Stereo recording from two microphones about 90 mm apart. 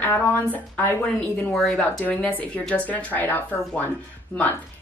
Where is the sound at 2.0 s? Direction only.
15° left (ahead or behind).